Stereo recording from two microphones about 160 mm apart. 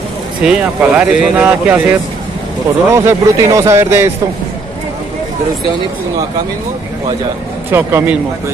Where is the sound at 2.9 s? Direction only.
20° right (ahead or behind).